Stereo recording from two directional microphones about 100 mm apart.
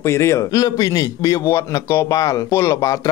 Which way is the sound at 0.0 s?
30° left (ahead or behind).